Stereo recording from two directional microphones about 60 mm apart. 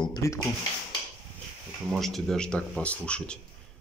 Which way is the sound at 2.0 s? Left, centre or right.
Centre.